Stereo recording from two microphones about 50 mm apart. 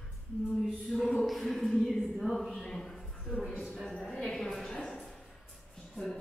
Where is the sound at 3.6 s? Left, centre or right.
Centre.